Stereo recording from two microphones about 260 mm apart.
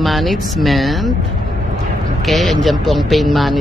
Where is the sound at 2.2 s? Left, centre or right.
Centre.